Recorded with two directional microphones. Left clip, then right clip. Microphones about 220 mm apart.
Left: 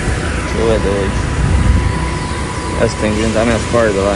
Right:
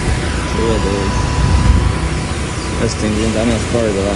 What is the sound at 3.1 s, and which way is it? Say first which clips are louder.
Speech: left 2 dB; centre (ahead or behind).